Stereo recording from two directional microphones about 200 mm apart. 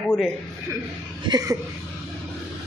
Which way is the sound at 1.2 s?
20° right (ahead or behind).